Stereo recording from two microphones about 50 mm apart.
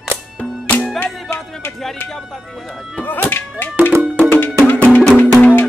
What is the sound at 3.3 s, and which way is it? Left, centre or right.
Speech, left.